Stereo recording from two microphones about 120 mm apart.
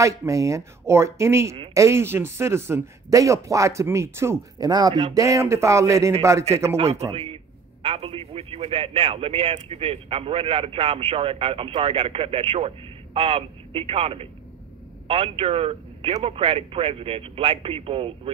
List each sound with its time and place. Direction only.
0.0 s speech: 25° right (ahead or behind)
4.6 s speech: 35° right (ahead or behind)
7.1 s a man's voice: 50° right (ahead or behind)